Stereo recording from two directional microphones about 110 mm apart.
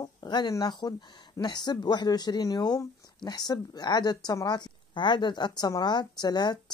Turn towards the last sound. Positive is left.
turn(degrees=40)  # may be behind; listen again after turning